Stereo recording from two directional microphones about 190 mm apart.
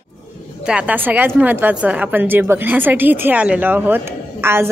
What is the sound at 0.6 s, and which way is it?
A woman's voice, 5° right (ahead or behind).